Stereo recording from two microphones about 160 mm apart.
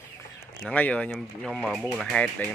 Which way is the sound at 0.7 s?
10° left (ahead or behind).